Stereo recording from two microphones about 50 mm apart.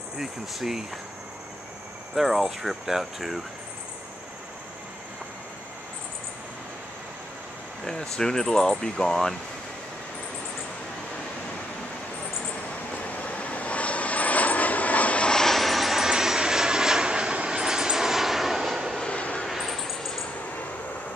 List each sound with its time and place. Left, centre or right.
0.2 s speech: centre
2.1 s speech: centre
7.8 s speech: centre
12.9 s vehicle: left
15.3 s vehicle: centre
19.0 s vehicle: left
19.4 s a sound: centre